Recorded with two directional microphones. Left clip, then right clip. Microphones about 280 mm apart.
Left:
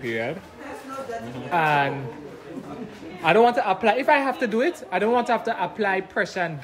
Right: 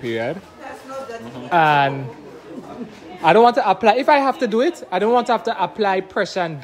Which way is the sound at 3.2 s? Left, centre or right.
Centre.